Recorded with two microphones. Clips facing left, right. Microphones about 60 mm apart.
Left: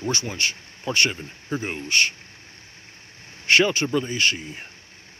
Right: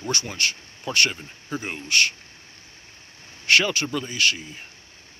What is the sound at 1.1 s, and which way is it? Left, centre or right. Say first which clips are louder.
Speech: left 3 dB; centre.